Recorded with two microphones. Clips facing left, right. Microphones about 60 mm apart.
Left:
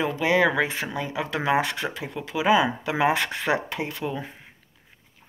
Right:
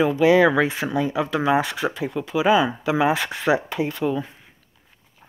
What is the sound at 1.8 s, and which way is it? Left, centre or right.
Speech, right.